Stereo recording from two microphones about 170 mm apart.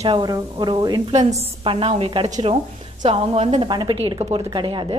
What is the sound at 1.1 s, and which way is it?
A woman's voice, 40° right (ahead or behind).